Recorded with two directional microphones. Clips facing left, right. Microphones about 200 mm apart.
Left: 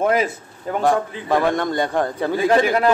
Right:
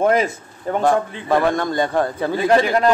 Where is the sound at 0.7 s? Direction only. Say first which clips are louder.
Right 1 dB; 15° left (ahead or behind).